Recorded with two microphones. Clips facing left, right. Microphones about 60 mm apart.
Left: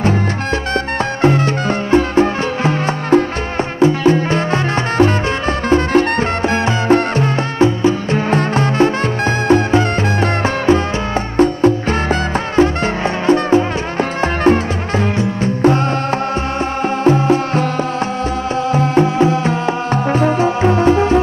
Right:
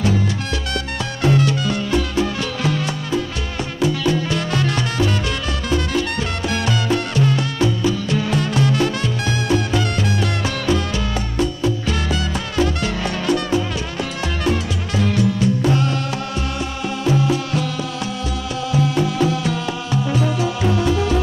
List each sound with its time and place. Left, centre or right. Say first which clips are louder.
1.2 s music: left 3 dB; left
17.0 s music: left 6 dB; left
18.7 s music: left 5 dB; left